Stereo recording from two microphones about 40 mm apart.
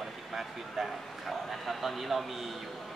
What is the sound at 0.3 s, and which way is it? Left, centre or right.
Speech, centre.